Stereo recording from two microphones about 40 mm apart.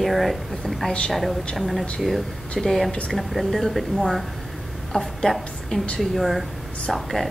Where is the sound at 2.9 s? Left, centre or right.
Left.